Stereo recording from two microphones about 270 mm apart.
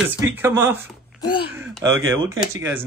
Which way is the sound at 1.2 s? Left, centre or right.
Centre.